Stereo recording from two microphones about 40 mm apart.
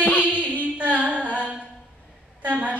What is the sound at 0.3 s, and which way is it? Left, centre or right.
Music, right.